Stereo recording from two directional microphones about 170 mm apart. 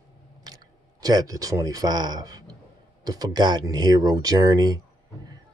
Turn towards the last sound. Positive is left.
turn(degrees=-25)  # may be behind; listen again after turning